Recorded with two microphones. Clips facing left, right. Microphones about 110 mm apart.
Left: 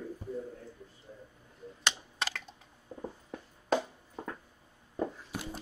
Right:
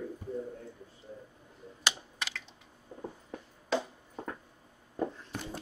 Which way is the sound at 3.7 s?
45° left (ahead or behind).